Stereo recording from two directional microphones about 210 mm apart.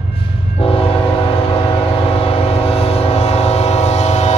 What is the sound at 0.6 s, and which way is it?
Train horn, 25° left (ahead or behind).